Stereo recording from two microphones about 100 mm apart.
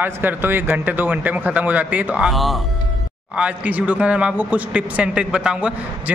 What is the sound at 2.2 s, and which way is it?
Speech, centre (ahead or behind).